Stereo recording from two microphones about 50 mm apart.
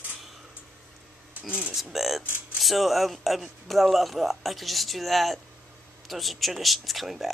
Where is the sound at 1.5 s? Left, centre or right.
Right.